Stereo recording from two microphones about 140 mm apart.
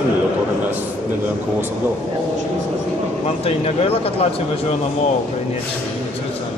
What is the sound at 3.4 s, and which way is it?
Speech, 45° left (ahead or behind).